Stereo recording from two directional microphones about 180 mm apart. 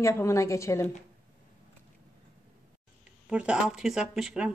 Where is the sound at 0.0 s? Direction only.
15° left (ahead or behind).